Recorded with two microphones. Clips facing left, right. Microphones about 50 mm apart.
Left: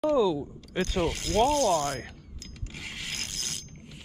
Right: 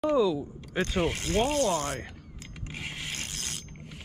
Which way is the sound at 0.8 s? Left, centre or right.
Centre.